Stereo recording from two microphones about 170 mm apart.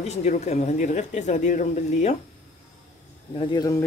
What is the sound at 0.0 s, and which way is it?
Speech, 40° left (ahead or behind).